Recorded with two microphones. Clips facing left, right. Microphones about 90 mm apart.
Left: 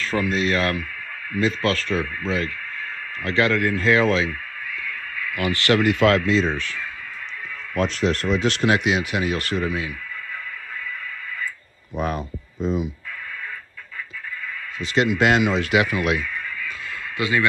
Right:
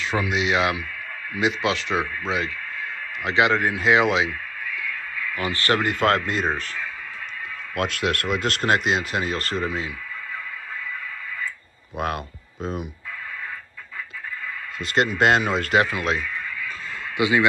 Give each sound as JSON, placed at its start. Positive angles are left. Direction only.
{"t": 0.0, "sound": "speech", "side_deg": -10}
{"t": 5.3, "sound": "speech", "side_deg": -30}
{"t": 7.8, "sound": "speech", "side_deg": -60}
{"t": 8.4, "sound": "speech", "side_deg": -45}
{"t": 15.0, "sound": "speech", "side_deg": -45}
{"t": 17.2, "sound": "speech", "side_deg": -20}